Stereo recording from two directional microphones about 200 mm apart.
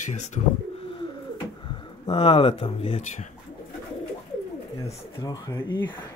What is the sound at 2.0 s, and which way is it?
Speech, 25° left (ahead or behind).